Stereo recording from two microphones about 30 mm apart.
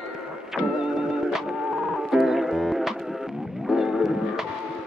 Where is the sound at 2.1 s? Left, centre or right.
Centre.